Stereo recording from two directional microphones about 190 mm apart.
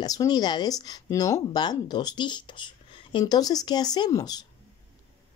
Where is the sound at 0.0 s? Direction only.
20° left (ahead or behind).